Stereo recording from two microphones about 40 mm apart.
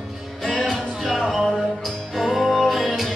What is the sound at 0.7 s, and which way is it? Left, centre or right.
Music, centre.